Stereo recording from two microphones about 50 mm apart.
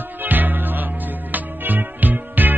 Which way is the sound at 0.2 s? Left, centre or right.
Right.